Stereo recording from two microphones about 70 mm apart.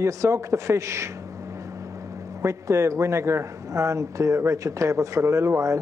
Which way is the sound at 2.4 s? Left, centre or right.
Right.